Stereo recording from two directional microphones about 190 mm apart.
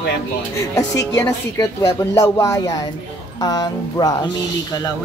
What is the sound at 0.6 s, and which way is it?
A woman's voice, 15° left (ahead or behind).